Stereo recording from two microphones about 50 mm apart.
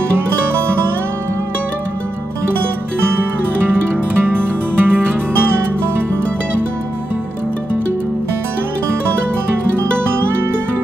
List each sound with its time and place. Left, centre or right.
4.2 s music: right